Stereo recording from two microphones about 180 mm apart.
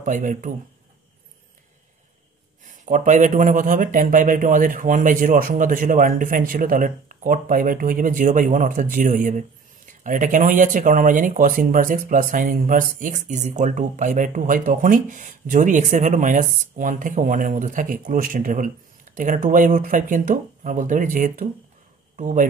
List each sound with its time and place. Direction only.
0.0 s speech: 45° right (ahead or behind)
2.6 s speech: 45° right (ahead or behind)